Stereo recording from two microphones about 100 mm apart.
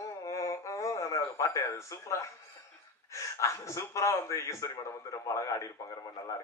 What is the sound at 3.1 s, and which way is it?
Speech, 30° left (ahead or behind).